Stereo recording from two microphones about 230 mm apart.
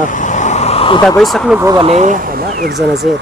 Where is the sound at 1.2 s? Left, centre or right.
Centre.